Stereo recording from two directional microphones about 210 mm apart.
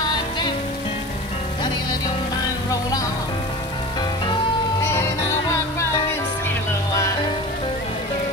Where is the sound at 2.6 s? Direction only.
15° left (ahead or behind).